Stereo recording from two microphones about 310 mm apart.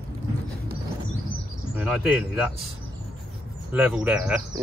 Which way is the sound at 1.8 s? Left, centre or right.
Centre.